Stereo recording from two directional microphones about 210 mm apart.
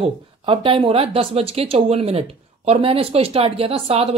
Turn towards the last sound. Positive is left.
turn(degrees=-30)  # may be behind; listen again after turning